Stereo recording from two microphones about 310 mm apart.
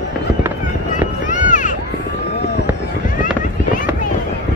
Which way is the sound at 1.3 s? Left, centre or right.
Left.